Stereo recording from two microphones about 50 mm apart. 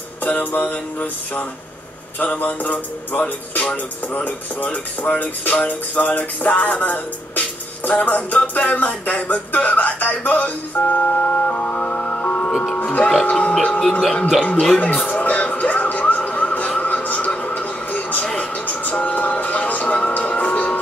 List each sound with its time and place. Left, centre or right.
0.2 s music: left
12.4 s music: centre
12.7 s music: left
15.0 s a sound: left
16.8 s television: left
18.4 s music: left